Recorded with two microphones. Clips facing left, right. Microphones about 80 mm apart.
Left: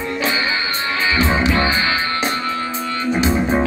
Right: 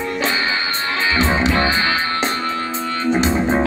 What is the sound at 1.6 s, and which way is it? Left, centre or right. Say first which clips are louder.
Music: even; right.